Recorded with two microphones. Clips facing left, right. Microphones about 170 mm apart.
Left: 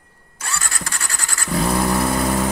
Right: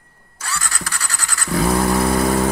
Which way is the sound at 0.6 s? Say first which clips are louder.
Right 1 dB; 25° left (ahead or behind).